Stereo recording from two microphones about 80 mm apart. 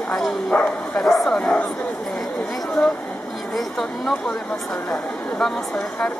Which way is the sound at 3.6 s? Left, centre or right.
Centre.